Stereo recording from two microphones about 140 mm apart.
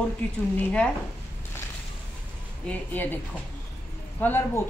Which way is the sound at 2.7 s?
10° left (ahead or behind).